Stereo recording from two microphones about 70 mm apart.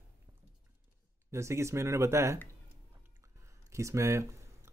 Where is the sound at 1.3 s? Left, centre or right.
Right.